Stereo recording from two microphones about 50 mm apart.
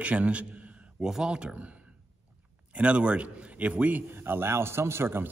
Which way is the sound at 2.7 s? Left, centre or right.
Right.